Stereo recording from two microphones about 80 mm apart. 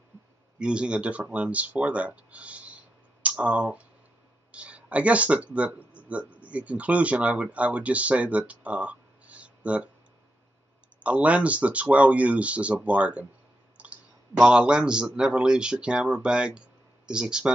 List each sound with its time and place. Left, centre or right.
0.6 s speech: centre
11.0 s speech: centre
13.7 s clicking: centre
15.1 s speech: centre